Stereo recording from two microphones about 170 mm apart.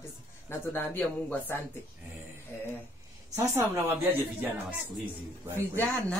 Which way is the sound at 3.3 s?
15° right (ahead or behind).